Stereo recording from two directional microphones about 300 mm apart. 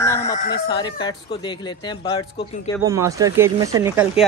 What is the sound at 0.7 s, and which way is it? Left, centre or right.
Speech, centre.